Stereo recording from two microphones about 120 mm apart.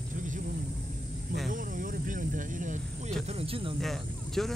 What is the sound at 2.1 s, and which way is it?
Speech, 90° right.